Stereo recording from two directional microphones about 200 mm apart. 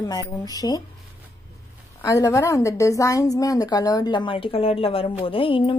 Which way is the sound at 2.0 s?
15° left (ahead or behind).